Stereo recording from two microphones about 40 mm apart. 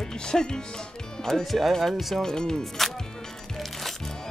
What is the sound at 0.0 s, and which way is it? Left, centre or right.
Speech, centre.